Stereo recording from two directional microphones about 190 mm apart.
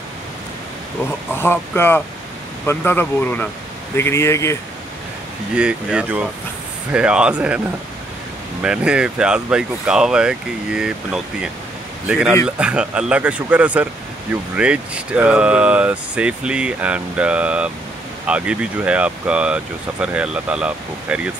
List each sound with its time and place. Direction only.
1.3 s speech: 10° left (ahead or behind)
5.5 s speech: 5° right (ahead or behind)
8.6 s speech: 5° right (ahead or behind)